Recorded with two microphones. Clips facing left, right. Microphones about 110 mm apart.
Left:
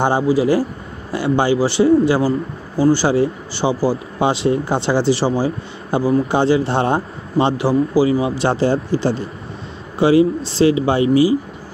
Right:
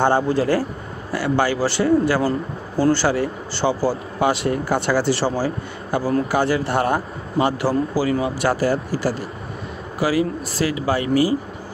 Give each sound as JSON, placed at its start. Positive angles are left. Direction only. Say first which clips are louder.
{"t": 0.0, "sound": "a man's voice", "louder": "left 2 dB", "side_deg": 15}